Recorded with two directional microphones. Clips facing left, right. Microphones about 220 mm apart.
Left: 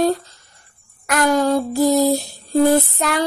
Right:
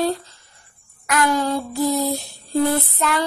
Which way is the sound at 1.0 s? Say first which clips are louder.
Left 4 dB; 45° left (ahead or behind).